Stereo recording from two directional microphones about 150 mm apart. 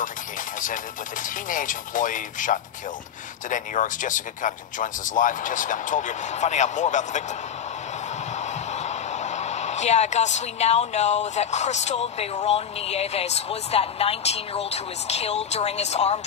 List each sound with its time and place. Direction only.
1.2 s speech: 60° left (ahead or behind)
8.4 s a woman's voice: 50° left (ahead or behind)